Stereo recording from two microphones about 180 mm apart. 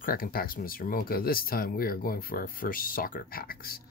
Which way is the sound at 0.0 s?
55° left (ahead or behind).